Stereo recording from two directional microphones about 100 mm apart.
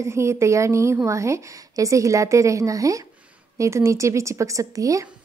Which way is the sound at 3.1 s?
15° right (ahead or behind).